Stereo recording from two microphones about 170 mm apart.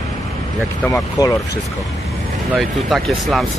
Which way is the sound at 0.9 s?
20° left (ahead or behind).